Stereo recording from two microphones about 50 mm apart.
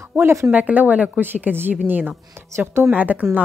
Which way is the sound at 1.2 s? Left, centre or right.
Right.